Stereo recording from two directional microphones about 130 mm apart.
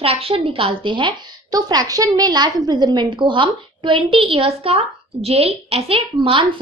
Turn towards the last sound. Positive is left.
turn(degrees=-45)  # may be behind; listen again after turning